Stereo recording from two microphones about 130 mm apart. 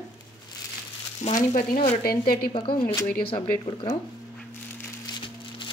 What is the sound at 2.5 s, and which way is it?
Speech, 45° left (ahead or behind).